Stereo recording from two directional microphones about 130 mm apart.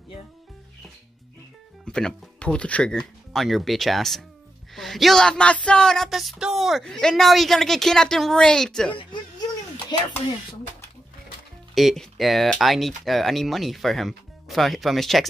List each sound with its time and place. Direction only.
1.9 s speech: 5° left (ahead or behind)
9.9 s speech: 30° left (ahead or behind)
11.7 s speech: centre (ahead or behind)